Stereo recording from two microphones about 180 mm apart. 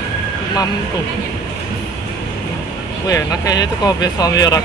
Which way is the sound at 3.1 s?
20° left (ahead or behind).